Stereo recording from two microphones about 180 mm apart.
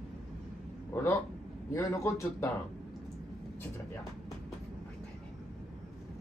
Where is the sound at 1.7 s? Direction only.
15° left (ahead or behind).